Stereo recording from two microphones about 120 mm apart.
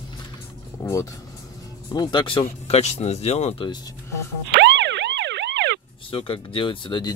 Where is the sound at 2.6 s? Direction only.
60° left (ahead or behind).